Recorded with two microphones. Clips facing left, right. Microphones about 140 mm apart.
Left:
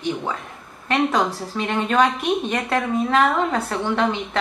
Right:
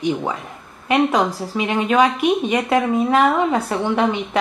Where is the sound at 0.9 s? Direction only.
5° right (ahead or behind).